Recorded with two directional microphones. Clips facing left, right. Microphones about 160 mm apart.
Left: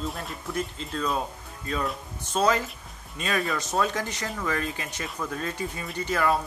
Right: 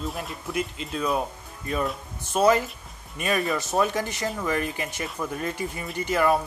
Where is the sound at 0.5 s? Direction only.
15° right (ahead or behind).